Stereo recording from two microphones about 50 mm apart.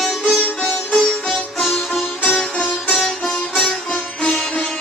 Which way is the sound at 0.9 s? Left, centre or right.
Centre.